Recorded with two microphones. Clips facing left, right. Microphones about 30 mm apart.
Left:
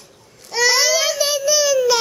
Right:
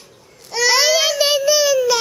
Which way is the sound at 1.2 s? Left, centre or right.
Right.